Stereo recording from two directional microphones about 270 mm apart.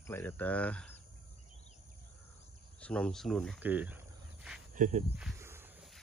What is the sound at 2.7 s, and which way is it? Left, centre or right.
Speech, centre.